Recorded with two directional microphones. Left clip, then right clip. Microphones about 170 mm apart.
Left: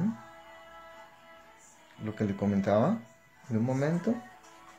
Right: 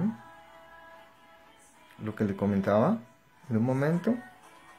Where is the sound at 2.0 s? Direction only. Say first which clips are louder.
Right 2 dB; 15° right (ahead or behind).